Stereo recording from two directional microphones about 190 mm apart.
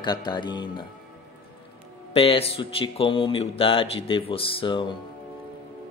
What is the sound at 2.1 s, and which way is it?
Speech, 30° left (ahead or behind).